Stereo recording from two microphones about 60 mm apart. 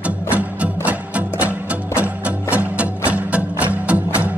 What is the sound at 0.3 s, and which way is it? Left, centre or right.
Music, right.